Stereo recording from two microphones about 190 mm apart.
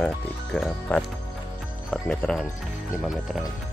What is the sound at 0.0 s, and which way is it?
Speech, 5° left (ahead or behind).